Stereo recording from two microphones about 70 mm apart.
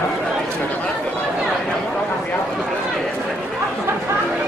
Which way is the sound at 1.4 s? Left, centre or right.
Centre.